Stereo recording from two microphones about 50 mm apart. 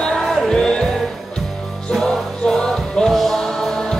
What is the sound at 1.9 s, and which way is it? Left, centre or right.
Music, centre.